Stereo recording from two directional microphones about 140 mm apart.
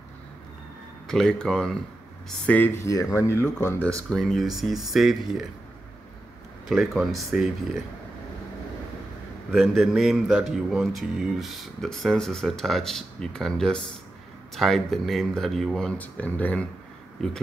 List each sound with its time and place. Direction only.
1.0 s speech: 5° left (ahead or behind)
4.1 s speech: centre (ahead or behind)
6.7 s speech: centre (ahead or behind)
9.5 s speech: centre (ahead or behind)